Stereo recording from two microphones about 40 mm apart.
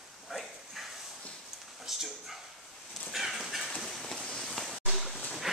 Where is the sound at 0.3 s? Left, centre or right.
Centre.